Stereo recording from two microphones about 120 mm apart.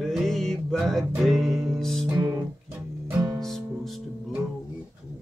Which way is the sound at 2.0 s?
10° right (ahead or behind).